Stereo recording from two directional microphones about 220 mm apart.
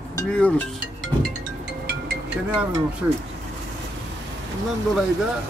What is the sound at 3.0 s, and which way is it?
Speech, 10° right (ahead or behind).